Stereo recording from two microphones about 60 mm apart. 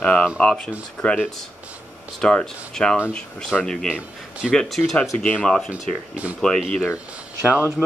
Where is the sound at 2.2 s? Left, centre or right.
Centre.